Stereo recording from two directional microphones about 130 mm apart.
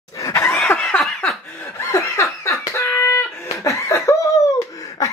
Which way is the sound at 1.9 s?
25° left (ahead or behind).